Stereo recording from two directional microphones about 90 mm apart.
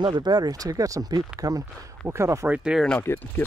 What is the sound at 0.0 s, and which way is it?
Speech, 60° right (ahead or behind).